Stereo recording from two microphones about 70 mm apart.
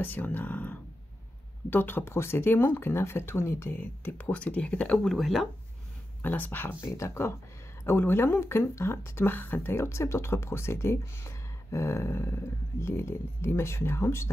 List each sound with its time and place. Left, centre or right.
0.0 s speech: left
3.8 s speech: left
4.9 s speech: centre
6.2 s speech: left
6.8 s speech: left